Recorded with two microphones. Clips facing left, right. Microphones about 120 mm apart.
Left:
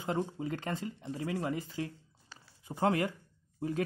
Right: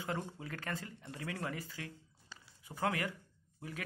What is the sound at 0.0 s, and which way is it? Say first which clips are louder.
Speech: left 7 dB; 20° left (ahead or behind).